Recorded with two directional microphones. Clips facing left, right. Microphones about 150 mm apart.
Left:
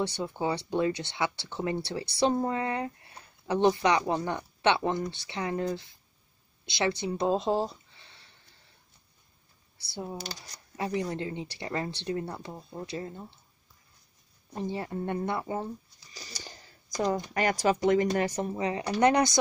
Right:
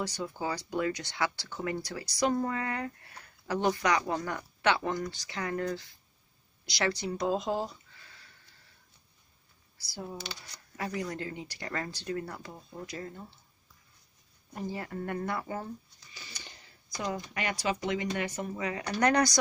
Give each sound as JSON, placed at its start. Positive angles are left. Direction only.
{"t": 0.0, "sound": "speech", "side_deg": 30}
{"t": 9.8, "sound": "speech", "side_deg": 25}
{"t": 10.1, "sound": "speech", "side_deg": 40}
{"t": 10.8, "sound": "speech", "side_deg": 25}
{"t": 14.5, "sound": "speech", "side_deg": 25}
{"t": 16.1, "sound": "speech", "side_deg": 40}